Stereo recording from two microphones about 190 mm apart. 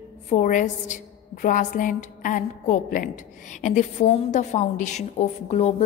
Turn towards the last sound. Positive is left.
turn(degrees=35)  # may be behind; listen again after turning